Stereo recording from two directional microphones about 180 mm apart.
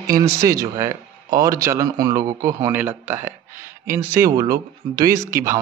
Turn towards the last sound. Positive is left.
turn(degrees=-15)  # may be behind; listen again after turning